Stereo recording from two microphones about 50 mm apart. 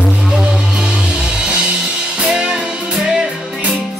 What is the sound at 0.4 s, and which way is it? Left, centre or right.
Music, centre.